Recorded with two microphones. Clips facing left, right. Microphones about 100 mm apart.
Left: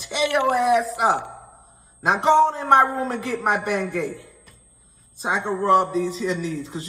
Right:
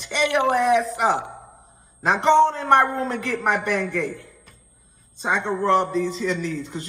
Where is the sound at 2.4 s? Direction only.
30° left (ahead or behind).